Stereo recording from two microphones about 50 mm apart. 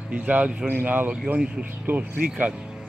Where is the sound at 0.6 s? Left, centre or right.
Right.